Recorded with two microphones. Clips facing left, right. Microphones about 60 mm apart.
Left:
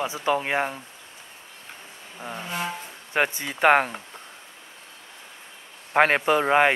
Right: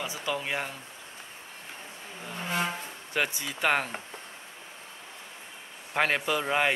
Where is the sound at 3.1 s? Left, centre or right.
Left.